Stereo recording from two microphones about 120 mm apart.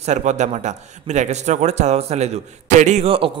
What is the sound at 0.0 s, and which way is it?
A man's voice, 75° right (ahead or behind).